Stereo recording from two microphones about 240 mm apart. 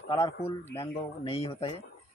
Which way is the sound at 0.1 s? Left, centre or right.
Centre.